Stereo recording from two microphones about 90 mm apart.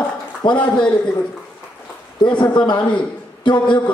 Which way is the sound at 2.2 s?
60° left (ahead or behind).